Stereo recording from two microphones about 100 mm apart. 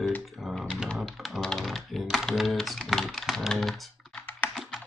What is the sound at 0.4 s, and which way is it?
Music, 5° right (ahead or behind).